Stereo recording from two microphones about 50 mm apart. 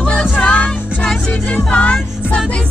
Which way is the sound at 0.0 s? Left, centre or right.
Left.